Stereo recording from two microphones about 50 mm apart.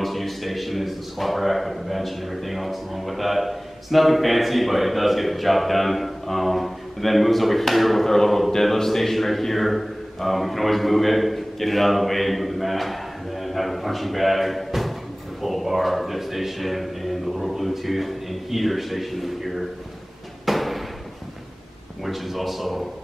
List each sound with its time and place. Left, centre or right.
0.0 s a man's voice: centre
20.4 s a sound: centre
22.0 s a man's voice: centre